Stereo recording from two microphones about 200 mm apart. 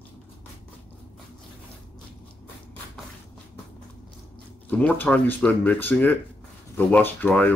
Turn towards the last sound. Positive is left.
turn(degrees=10)  # may be behind; listen again after turning